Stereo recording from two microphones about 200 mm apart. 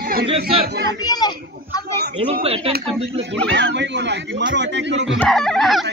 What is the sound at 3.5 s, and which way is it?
Speech, 65° right (ahead or behind).